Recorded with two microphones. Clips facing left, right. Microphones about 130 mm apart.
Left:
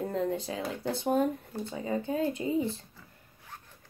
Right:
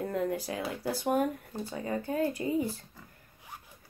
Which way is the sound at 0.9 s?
25° left (ahead or behind).